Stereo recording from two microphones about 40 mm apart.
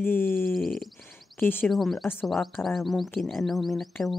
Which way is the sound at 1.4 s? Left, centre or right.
Left.